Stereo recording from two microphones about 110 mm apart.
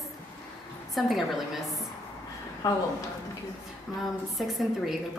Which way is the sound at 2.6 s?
35° left (ahead or behind).